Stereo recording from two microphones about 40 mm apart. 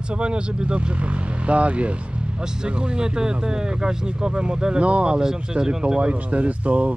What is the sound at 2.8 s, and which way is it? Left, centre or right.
Speech, centre.